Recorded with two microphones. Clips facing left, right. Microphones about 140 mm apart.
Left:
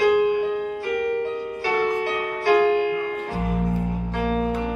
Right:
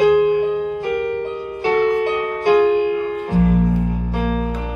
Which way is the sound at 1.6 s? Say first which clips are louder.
Right 7 dB; 20° right (ahead or behind).